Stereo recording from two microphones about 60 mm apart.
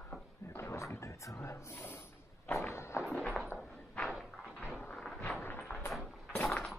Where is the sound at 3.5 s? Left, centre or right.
Left.